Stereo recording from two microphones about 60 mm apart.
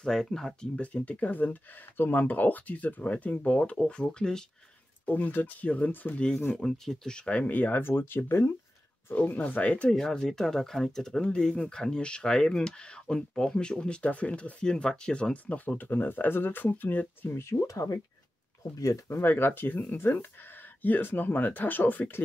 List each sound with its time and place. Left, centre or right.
0.0 s speech: centre
0.7 s speech: left
5.0 s speech: left
6.6 s speech: centre; by 8.5 s left
9.1 s speech: left
9.8 s speech: centre
15.4 s speech: left
17.6 s speech: left
19.1 s speech: left